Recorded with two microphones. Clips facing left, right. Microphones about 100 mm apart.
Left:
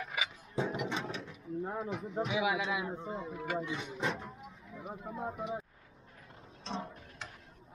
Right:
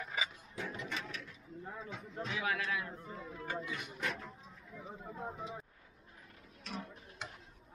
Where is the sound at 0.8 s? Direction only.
30° left (ahead or behind).